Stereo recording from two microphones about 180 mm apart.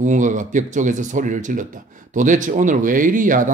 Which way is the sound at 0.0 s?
45° right (ahead or behind).